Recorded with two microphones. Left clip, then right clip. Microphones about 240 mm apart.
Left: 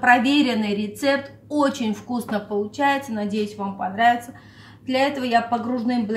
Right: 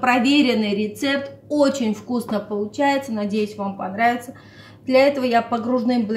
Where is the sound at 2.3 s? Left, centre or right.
Left.